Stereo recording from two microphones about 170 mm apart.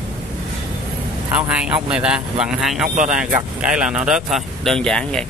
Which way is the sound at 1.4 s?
5° right (ahead or behind).